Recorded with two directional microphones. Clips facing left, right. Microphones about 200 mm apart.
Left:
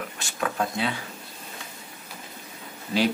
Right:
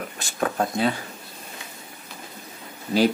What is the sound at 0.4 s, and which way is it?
Speech, 40° right (ahead or behind).